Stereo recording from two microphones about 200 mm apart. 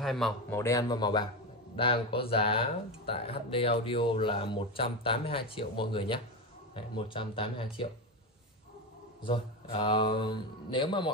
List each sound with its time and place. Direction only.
0.0 s speech: centre (ahead or behind)
0.6 s speech: 15° left (ahead or behind)
9.2 s speech: 25° left (ahead or behind)